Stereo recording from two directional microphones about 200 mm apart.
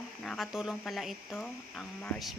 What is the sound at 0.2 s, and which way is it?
Speech, centre (ahead or behind).